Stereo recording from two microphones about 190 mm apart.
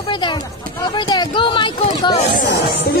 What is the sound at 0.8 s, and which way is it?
Speech, 25° left (ahead or behind).